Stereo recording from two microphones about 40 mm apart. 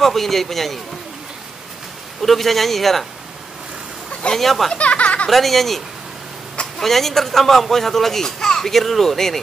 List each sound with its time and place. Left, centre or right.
0.0 s a man's voice: centre
2.2 s a man's voice: centre
4.3 s a man's voice: centre
4.7 s a sound: left
5.3 s a man's voice: centre
6.8 s speech: centre